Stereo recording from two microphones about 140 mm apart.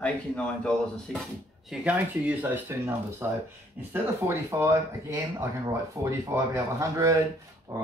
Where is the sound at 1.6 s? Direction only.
10° right (ahead or behind).